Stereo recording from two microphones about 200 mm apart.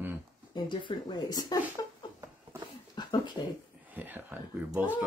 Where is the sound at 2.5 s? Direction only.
15° right (ahead or behind).